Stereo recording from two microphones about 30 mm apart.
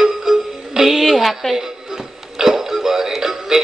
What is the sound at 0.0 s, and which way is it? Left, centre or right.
Music, centre.